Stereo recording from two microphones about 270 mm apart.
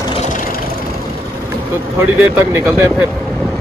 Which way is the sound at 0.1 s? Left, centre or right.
Left.